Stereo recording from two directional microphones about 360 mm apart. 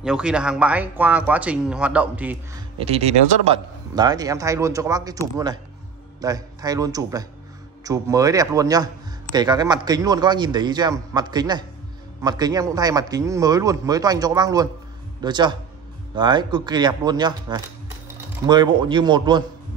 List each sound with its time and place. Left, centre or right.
0.0 s speech: centre
2.8 s a man's voice: centre
6.2 s a man's voice: centre